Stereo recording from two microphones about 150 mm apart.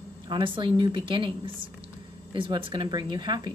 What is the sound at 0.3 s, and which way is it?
Speech, 35° right (ahead or behind).